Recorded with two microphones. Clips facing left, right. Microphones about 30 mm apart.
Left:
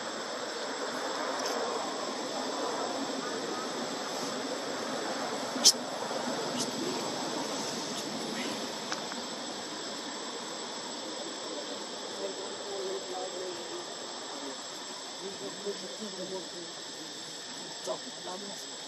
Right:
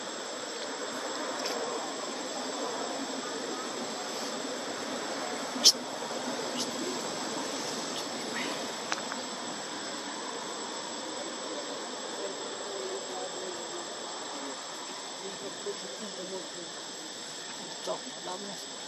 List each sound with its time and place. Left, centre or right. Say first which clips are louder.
5.3 s vehicle: right 2 dB; centre
7.9 s vehicle: right 1 dB; centre